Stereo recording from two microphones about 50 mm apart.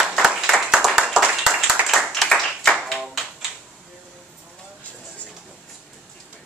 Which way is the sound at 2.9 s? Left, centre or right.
Centre.